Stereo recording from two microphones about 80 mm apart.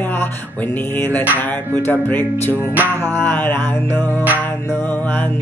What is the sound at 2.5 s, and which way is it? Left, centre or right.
Music, right.